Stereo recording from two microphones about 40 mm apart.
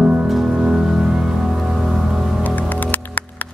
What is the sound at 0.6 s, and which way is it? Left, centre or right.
Music, centre.